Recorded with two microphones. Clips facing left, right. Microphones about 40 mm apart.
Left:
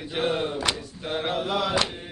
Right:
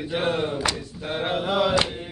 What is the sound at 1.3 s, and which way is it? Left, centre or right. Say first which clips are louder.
Mantra: right 4 dB; right.